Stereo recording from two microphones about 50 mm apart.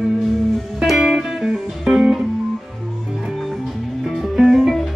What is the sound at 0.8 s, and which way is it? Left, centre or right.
Music, centre.